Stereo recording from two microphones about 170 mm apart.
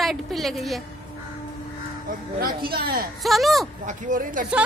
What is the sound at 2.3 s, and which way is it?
Speech, 60° right (ahead or behind).